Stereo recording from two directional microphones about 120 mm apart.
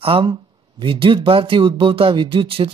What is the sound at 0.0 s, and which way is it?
Speech, 45° right (ahead or behind).